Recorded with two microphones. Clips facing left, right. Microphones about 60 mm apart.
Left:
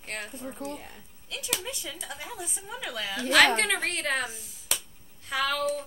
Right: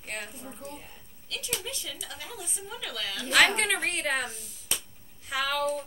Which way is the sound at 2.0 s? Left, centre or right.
Left.